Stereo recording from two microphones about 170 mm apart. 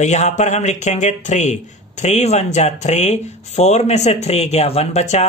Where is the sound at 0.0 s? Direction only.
45° left (ahead or behind).